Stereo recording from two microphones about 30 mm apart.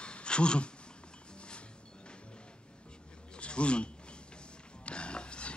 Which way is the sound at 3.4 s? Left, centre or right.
Left.